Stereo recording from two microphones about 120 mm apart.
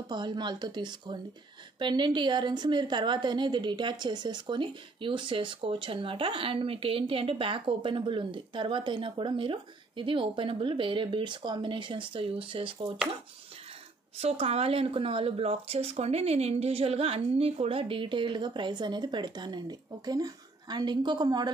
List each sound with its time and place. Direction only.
0.1 s a woman's voice: 40° right (ahead or behind)
14.1 s a woman's voice: 60° right (ahead or behind); by 21.5 s 35° right (ahead or behind)